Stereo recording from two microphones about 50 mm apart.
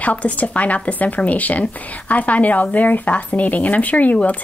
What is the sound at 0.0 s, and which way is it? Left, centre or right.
Speech, left.